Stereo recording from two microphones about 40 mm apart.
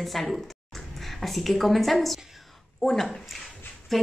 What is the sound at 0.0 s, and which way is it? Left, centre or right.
A woman's voice, centre.